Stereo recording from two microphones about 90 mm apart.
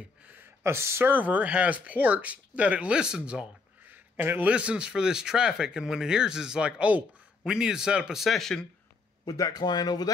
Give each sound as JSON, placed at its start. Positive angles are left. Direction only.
{"t": 0.2, "sound": "a sound", "side_deg": -15}
{"t": 0.7, "sound": "speech", "side_deg": -30}
{"t": 9.2, "sound": "speech", "side_deg": 45}